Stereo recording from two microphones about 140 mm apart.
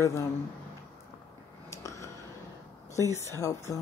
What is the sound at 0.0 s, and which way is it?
Speech, 20° left (ahead or behind).